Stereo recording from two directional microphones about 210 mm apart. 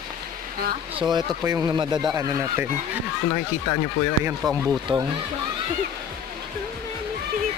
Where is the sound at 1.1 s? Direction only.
15° right (ahead or behind).